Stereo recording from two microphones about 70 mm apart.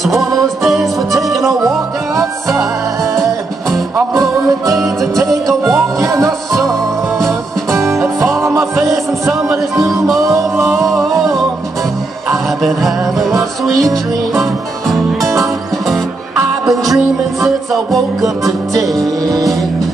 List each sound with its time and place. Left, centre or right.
0.2 s music: centre
5.9 s music: right
7.8 s music: centre
10.7 s music: centre
12.6 s music: centre
16.6 s music: centre